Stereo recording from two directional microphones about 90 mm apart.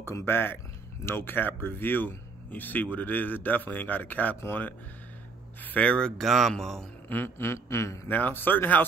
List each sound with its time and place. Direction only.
0.0 s a man's voice: 25° left (ahead or behind); by 6.9 s 5° left (ahead or behind)
7.1 s speech: 25° left (ahead or behind)
8.1 s speech: 20° left (ahead or behind)